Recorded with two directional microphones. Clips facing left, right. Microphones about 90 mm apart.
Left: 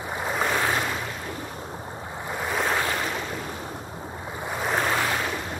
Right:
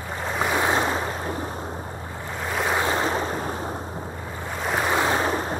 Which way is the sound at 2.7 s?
25° right (ahead or behind).